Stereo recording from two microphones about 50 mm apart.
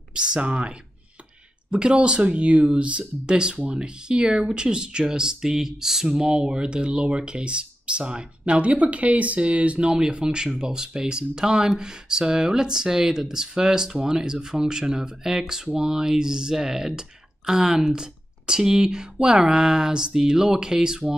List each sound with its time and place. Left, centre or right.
0.1 s speech: centre
8.5 s speech: right
9.9 s speech: centre